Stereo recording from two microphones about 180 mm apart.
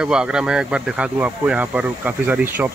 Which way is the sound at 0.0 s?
5° right (ahead or behind).